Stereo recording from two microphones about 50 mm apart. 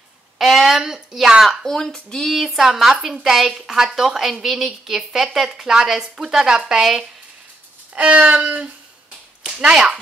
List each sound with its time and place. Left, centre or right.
0.4 s a sound: centre
0.7 s a woman's voice: centre
1.7 s speech: centre
2.3 s a woman's voice: centre
7.9 s a sound: right
9.4 s speech: centre